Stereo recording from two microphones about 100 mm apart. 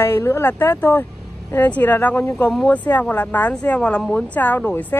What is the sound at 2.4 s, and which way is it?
A woman's voice, 10° left (ahead or behind).